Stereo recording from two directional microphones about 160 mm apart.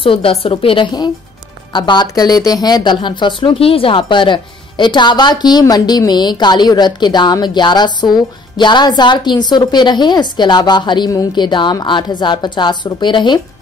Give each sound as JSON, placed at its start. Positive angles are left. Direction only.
{"t": 0.0, "sound": "a woman's voice", "side_deg": 35}